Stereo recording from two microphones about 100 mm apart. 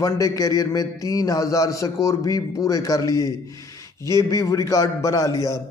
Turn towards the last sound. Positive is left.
turn(degrees=35)  # may be behind; listen again after turning